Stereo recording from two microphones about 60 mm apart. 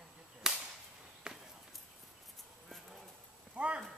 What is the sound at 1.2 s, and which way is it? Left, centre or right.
Walk, centre.